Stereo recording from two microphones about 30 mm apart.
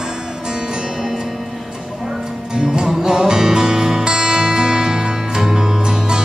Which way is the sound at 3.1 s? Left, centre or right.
Right.